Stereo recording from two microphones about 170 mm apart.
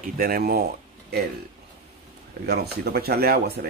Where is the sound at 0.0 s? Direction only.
60° right (ahead or behind).